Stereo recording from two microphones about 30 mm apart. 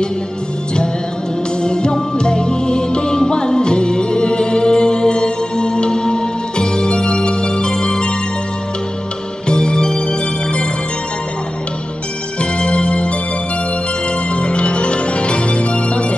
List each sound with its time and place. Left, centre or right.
1.6 s music: left
9.5 s music: left
12.4 s music: left
14.3 s music: left